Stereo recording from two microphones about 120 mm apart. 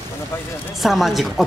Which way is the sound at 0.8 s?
Centre (ahead or behind).